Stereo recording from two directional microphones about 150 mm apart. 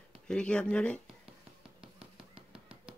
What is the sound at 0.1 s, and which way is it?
Speech, 5° left (ahead or behind).